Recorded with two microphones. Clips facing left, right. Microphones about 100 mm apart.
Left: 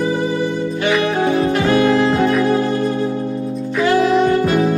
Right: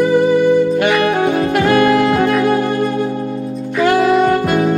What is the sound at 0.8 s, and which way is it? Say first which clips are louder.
Saxophone: right 3 dB; 45° right (ahead or behind).